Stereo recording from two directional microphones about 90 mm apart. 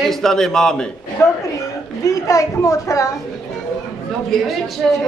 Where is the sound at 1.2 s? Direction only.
30° left (ahead or behind).